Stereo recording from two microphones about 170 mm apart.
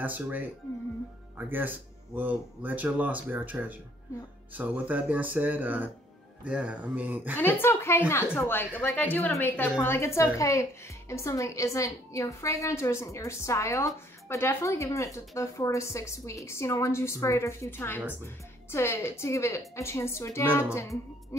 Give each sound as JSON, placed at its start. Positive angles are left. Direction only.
{"t": 0.0, "sound": "speech", "side_deg": -10}
{"t": 1.5, "sound": "speech", "side_deg": -10}
{"t": 7.3, "sound": "a woman's voice", "side_deg": 10}